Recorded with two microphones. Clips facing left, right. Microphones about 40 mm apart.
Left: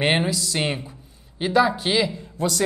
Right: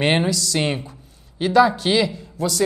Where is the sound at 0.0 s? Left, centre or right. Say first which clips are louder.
Right 2 dB; centre.